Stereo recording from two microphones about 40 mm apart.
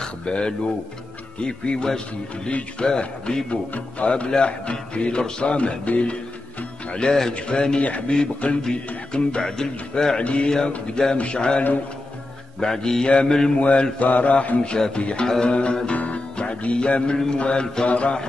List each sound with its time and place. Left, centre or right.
0.0 s a sound: left
1.4 s speech: left
3.7 s mantra: left
4.3 s speech: left
10.2 s speech: left
12.5 s speech: centre
13.6 s mantra: left
14.6 s speech: left
16.0 s music: left
17.8 s mantra: left